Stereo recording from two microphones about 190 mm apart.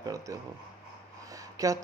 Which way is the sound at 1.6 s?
15° right (ahead or behind).